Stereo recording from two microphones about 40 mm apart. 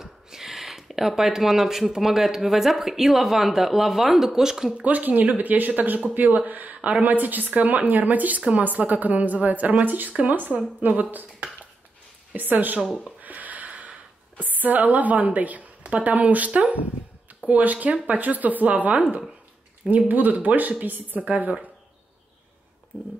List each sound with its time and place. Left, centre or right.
0.0 s speech: centre
4.7 s a woman's voice: right
8.4 s speech: right
8.6 s a woman's voice: right
13.2 s a sound: right
14.4 s a woman's voice: right